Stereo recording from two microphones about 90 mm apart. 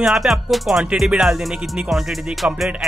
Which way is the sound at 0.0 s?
5° right (ahead or behind).